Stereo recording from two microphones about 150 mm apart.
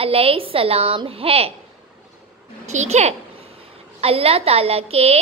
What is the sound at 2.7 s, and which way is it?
A child's voice, 50° right (ahead or behind).